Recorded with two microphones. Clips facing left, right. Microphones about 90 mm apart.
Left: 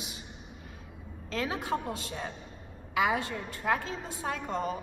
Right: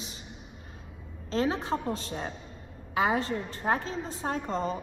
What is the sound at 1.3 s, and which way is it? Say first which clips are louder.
A woman's voice: right 4 dB; 30° right (ahead or behind).